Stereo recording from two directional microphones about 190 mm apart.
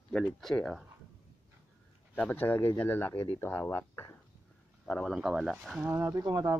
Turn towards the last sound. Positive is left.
turn(degrees=-20)  # may be behind; listen again after turning